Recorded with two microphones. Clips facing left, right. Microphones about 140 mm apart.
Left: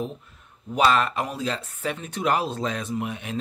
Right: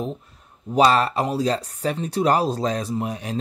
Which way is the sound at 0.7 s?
35° right (ahead or behind).